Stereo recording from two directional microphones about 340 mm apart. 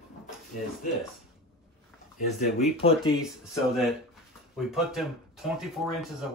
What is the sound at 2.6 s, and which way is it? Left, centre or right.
Speech, centre.